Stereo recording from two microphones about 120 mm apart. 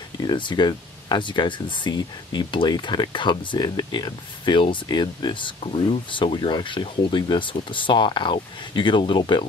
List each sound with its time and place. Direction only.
0.2 s speech: 40° left (ahead or behind)